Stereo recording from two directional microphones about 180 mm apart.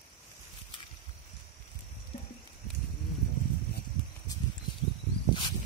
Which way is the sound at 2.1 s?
45° left (ahead or behind).